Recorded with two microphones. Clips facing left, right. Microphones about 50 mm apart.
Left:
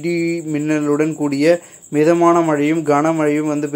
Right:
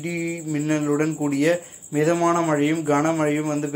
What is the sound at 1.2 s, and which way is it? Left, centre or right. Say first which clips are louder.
Speech: left 6 dB; left.